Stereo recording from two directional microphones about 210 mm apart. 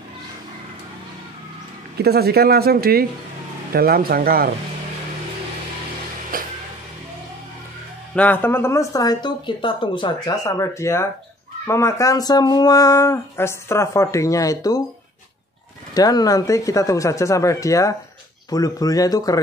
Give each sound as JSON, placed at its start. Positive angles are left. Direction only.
{"t": 2.0, "sound": "speech", "side_deg": -50}
{"t": 6.3, "sound": "speech", "side_deg": -40}
{"t": 8.1, "sound": "speech", "side_deg": 5}
{"t": 15.9, "sound": "speech", "side_deg": 20}